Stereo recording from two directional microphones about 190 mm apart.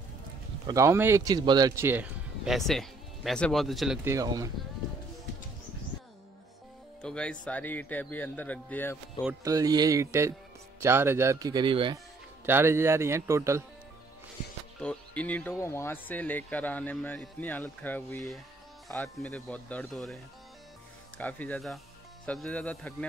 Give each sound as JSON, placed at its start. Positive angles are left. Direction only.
{"t": 0.7, "sound": "a man's voice", "side_deg": -15}
{"t": 4.0, "sound": "speech", "side_deg": -15}
{"t": 7.0, "sound": "speech", "side_deg": 5}
{"t": 9.4, "sound": "speech", "side_deg": -20}
{"t": 12.4, "sound": "speech", "side_deg": -10}
{"t": 14.8, "sound": "speech", "side_deg": 5}
{"t": 21.2, "sound": "speech", "side_deg": 10}